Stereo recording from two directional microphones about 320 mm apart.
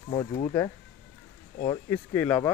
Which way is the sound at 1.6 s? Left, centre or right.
Centre.